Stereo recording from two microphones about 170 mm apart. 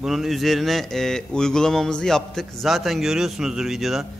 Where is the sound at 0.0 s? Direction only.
Centre (ahead or behind).